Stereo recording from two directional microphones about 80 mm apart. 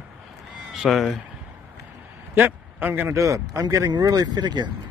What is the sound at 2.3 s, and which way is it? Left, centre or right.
Speech, right.